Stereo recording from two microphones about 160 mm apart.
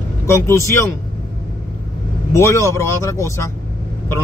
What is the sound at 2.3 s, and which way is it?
Speech, 20° left (ahead or behind).